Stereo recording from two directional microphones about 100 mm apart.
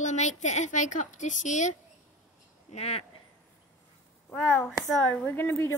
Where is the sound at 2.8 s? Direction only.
90° left.